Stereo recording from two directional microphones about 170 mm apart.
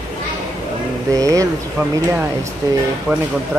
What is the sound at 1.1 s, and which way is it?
Speech, 20° right (ahead or behind).